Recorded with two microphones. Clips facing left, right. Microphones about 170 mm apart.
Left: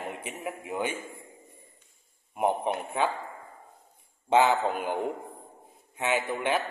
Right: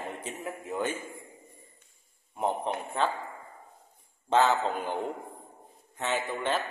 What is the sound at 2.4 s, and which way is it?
Speech, 15° left (ahead or behind).